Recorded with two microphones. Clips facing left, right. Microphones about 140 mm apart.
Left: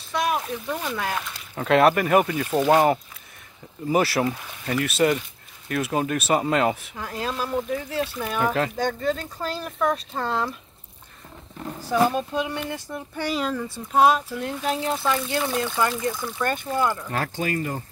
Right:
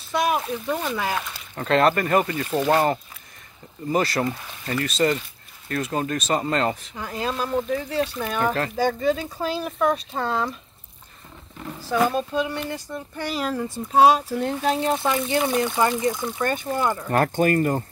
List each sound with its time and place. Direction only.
0.1 s speech: 5° right (ahead or behind)
11.8 s speech: 15° left (ahead or behind)
12.9 s speech: centre (ahead or behind)
14.1 s speech: 35° right (ahead or behind)
17.1 s speech: 50° right (ahead or behind)